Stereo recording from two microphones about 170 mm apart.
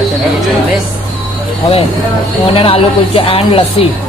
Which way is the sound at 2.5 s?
35° left (ahead or behind).